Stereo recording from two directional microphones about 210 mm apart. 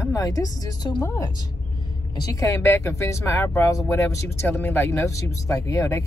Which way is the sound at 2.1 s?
15° left (ahead or behind).